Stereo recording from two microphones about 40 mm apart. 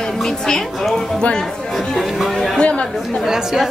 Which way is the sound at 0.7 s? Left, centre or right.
Centre.